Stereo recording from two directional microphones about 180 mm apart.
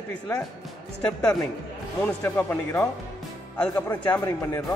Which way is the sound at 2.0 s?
10° left (ahead or behind).